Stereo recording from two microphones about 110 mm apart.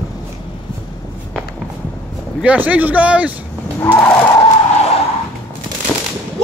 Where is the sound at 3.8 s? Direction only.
20° left (ahead or behind).